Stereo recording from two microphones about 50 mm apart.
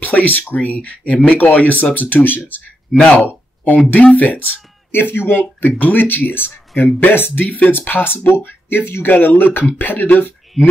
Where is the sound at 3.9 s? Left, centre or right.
Left.